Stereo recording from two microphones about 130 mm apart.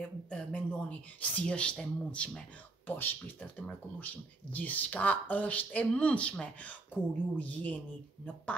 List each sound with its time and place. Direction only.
0.3 s speech: 10° left (ahead or behind)